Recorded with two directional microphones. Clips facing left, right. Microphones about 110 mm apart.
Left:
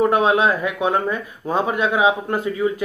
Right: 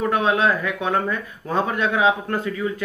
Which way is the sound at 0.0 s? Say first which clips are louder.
Left 3 dB; 20° left (ahead or behind).